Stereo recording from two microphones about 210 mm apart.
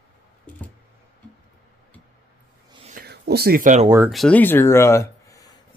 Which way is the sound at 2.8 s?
40° right (ahead or behind).